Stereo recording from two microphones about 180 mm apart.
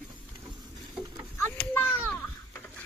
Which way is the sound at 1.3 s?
10° left (ahead or behind).